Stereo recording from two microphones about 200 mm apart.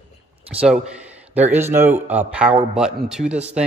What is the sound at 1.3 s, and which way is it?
Speech, 10° right (ahead or behind).